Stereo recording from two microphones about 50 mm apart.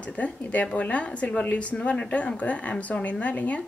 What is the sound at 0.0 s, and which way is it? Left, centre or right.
A woman's voice, left.